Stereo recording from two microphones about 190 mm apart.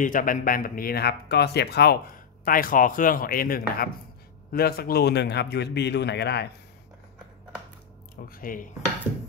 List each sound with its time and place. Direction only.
0.0 s a man's voice: 45° left (ahead or behind); by 6.5 s 60° left (ahead or behind)
8.2 s speech: 50° left (ahead or behind)